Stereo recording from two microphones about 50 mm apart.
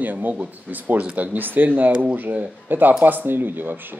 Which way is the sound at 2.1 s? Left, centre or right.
Right.